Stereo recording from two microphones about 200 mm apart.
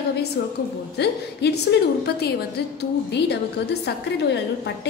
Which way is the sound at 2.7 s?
55° left (ahead or behind).